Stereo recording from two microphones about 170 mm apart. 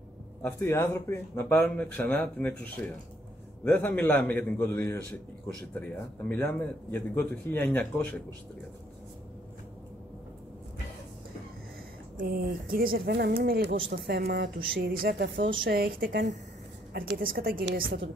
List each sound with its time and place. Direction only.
0.4 s a man's voice: 15° left (ahead or behind)
12.2 s a woman's voice: 65° right (ahead or behind); by 15.4 s 85° right
15.6 s a woman's voice: 60° right (ahead or behind); by 16.3 s 80° right
16.9 s a woman's voice: 65° right (ahead or behind)